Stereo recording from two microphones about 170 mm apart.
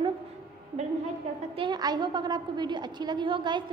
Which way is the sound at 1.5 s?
25° right (ahead or behind).